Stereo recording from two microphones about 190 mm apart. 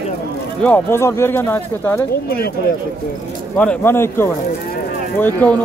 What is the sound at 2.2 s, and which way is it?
Speech, 55° left (ahead or behind).